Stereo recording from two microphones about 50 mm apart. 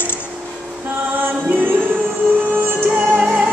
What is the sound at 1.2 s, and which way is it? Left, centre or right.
Music, right.